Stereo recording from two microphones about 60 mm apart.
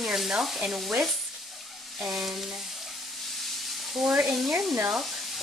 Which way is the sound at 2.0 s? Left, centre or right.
Centre.